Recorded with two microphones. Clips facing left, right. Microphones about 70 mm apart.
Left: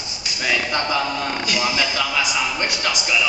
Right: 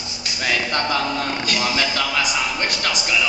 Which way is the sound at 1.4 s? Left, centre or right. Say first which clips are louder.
Left 1 dB; centre.